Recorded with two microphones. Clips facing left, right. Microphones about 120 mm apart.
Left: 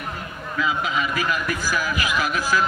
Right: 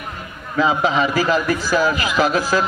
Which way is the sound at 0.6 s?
30° right (ahead or behind).